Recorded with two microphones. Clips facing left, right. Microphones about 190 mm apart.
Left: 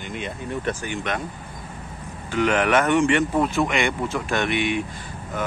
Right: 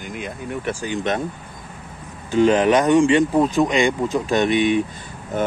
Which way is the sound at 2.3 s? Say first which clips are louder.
Right 5 dB; 20° right (ahead or behind).